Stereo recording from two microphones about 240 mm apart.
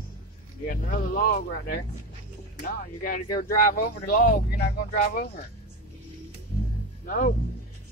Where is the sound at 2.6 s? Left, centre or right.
Left.